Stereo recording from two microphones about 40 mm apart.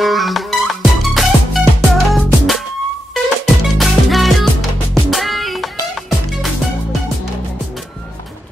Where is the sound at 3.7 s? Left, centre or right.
Centre.